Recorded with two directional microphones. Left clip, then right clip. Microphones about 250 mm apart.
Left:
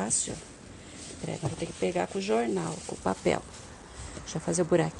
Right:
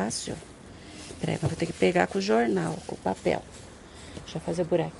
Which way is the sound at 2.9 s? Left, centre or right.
Centre.